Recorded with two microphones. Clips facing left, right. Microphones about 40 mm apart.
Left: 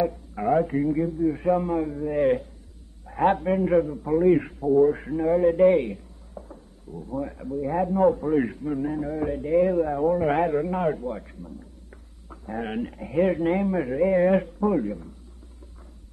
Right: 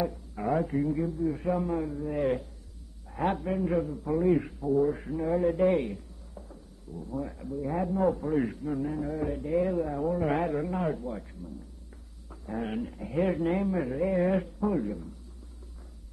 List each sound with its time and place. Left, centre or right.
0.5 s a man's voice: centre
3.1 s a sound: left
3.4 s a man's voice: left
13.1 s a man's voice: centre